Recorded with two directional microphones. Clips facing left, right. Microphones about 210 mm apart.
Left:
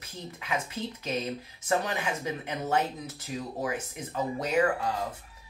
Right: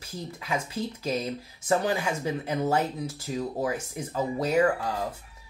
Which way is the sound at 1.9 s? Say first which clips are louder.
Right 4 dB; 30° right (ahead or behind).